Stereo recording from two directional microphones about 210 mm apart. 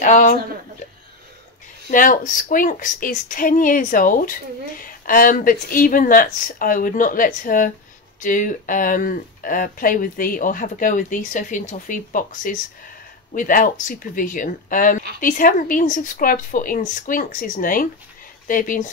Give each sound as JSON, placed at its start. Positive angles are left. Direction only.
{"t": 0.0, "sound": "a woman's voice", "side_deg": 35}
{"t": 1.9, "sound": "a woman's voice", "side_deg": 40}